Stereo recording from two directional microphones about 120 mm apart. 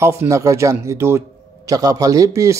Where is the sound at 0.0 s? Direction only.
25° right (ahead or behind).